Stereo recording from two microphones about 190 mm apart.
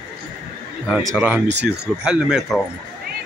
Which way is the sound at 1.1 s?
10° right (ahead or behind).